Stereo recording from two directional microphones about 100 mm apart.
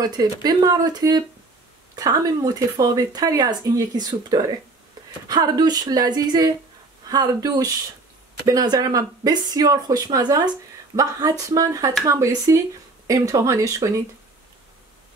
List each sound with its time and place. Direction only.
0.0 s speech: 45° right (ahead or behind)